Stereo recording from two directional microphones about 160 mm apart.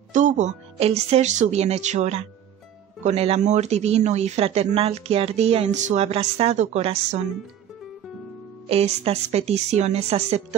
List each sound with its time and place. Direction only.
0.1 s speech: 50° right (ahead or behind)
8.6 s speech: 40° right (ahead or behind)